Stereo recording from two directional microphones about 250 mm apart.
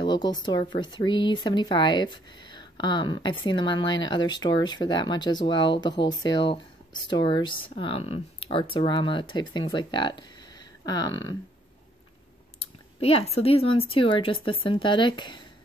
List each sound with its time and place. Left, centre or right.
0.0 s speech: centre
12.5 s speech: left